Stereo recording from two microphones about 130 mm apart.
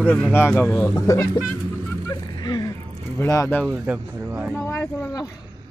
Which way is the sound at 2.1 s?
35° left (ahead or behind).